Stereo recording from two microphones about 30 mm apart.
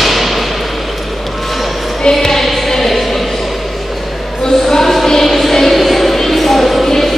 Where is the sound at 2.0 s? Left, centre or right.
Centre.